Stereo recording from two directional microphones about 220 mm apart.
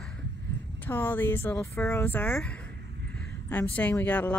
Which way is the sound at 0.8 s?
10° left (ahead or behind).